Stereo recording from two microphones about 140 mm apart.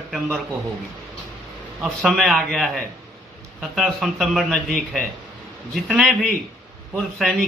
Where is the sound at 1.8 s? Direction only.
Centre (ahead or behind).